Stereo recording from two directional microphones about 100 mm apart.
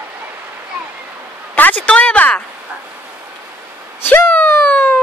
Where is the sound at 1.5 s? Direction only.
15° left (ahead or behind).